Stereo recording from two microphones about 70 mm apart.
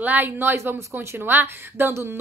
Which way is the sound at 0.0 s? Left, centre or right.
Right.